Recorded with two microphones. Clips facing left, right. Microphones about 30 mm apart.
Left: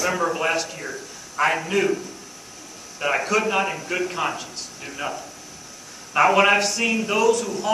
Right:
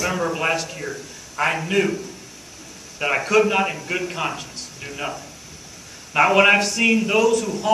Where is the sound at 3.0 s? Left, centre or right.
Centre.